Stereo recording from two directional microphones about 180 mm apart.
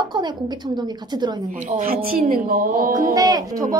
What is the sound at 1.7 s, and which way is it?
Speech, 55° right (ahead or behind).